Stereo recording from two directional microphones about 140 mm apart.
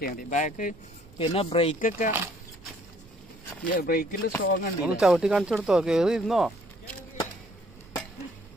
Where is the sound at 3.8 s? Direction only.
90° left.